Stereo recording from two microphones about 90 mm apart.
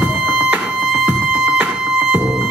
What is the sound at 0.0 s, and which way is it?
Music, 15° right (ahead or behind).